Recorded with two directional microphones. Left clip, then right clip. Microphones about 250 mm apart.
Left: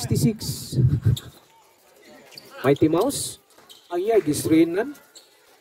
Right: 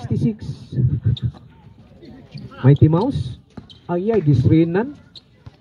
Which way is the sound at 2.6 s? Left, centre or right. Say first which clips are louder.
Right 1 dB; centre.